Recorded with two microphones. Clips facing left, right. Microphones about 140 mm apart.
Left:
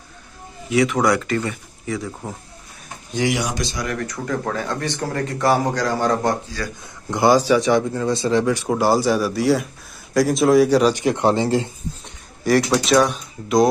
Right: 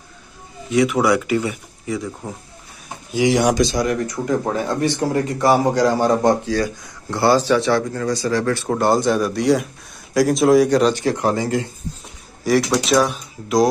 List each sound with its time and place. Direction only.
0.7 s speech: 5° right (ahead or behind)
1.9 s speech: centre (ahead or behind)
3.2 s speech: 10° right (ahead or behind)
3.8 s speech: 20° right (ahead or behind)
6.8 s a man's voice: 15° left (ahead or behind)
12.4 s speech: centre (ahead or behind)